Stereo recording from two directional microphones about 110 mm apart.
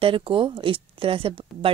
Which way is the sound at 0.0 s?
50° right (ahead or behind).